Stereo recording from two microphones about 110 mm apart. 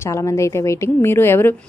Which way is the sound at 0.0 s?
25° left (ahead or behind).